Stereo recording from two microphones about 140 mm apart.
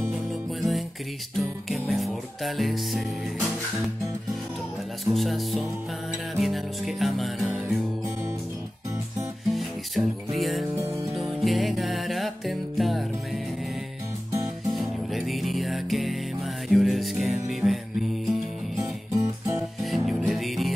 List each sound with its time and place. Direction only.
0.3 s music: centre (ahead or behind)
5.0 s music: centre (ahead or behind)
9.5 s music: centre (ahead or behind)
14.7 s music: centre (ahead or behind)
19.1 s music: 20° right (ahead or behind)
20.1 s music: centre (ahead or behind)